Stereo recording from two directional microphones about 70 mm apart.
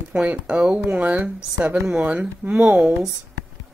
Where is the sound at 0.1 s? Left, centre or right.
Centre.